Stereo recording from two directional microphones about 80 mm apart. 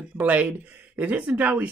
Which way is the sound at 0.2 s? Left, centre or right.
Centre.